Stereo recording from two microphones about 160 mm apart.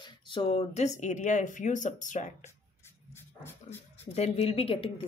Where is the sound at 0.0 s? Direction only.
30° left (ahead or behind); by 2.3 s 50° left (ahead or behind).